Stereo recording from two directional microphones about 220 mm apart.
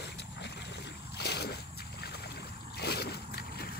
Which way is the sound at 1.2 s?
50° left (ahead or behind).